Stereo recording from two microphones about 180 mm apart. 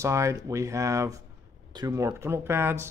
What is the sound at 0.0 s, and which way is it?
Speech, 15° right (ahead or behind).